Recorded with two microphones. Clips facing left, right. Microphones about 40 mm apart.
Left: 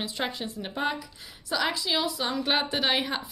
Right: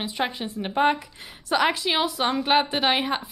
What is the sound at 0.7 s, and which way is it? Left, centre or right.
Speech, right.